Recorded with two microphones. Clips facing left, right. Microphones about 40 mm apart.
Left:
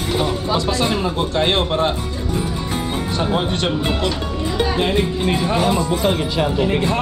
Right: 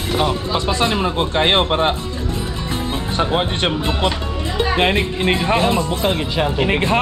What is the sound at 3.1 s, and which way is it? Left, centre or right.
Speech, right.